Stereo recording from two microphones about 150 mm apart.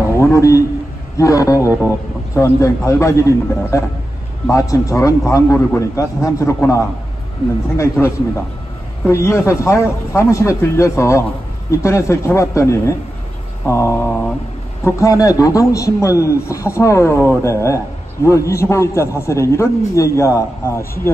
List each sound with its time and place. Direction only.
0.2 s a sound: 20° left (ahead or behind)
1.1 s a man's voice: 20° left (ahead or behind)
13.7 s mantra: 20° left (ahead or behind)
14.9 s a man's voice: 20° left (ahead or behind)